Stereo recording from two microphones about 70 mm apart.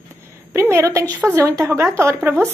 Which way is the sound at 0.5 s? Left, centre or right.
Right.